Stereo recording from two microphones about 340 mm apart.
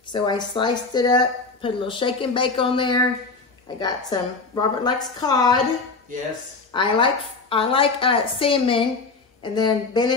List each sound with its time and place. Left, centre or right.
0.1 s a woman's voice: centre
6.7 s a woman's voice: centre